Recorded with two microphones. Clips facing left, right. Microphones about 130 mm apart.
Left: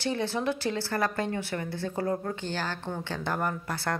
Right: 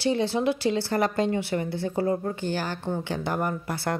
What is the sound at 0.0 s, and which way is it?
Speech, 15° right (ahead or behind).